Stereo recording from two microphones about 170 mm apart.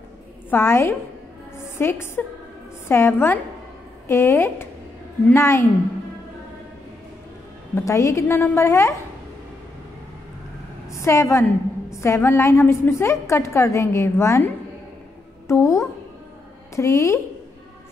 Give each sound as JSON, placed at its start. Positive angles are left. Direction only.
{"t": 0.5, "sound": "a woman's voice", "side_deg": 15}
{"t": 7.7, "sound": "a woman's voice", "side_deg": 15}
{"t": 10.9, "sound": "a woman's voice", "side_deg": 15}